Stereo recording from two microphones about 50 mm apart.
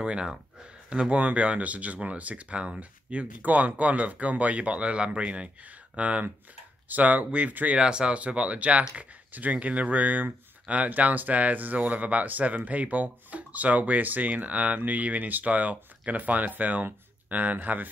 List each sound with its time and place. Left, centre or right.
0.0 s speech: centre
1.1 s speech: right
7.8 s speech: centre; by 17.8 s right